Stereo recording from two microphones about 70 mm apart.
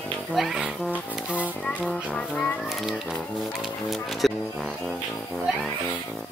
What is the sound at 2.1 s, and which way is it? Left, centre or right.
Speech, centre.